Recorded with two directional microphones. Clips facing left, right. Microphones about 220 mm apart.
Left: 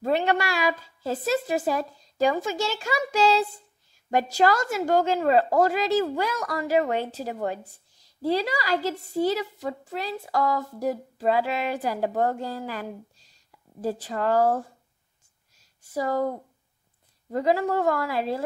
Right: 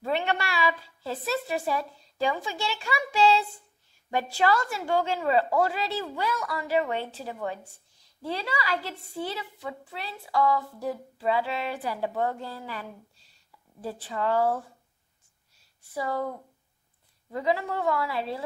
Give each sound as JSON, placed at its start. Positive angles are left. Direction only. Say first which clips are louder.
{"t": 0.0, "sound": "a woman's voice", "louder": "left 5 dB", "side_deg": 40}
{"t": 13.7, "sound": "a woman's voice", "louder": "left 5 dB", "side_deg": 40}
{"t": 15.9, "sound": "a woman's voice", "louder": "left 5 dB", "side_deg": 40}